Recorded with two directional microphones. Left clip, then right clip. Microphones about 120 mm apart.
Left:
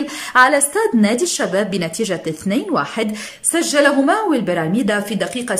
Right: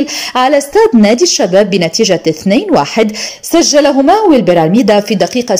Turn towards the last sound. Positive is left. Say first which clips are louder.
# right 10 dB
turn(degrees=-35)  # may be behind; listen again after turning